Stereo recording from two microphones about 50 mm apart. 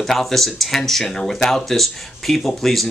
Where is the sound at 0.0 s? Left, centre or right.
Centre.